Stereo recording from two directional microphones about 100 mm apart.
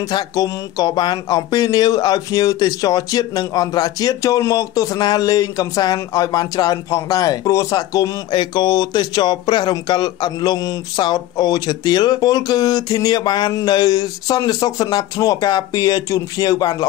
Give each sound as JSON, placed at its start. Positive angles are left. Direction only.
{"t": 0.1, "sound": "speech", "side_deg": 40}
{"t": 8.3, "sound": "speech", "side_deg": 45}